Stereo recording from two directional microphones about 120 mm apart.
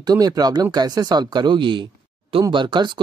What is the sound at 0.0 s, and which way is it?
Speech, 30° right (ahead or behind).